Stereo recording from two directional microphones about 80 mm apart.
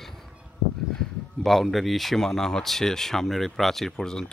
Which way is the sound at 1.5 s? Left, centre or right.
Centre.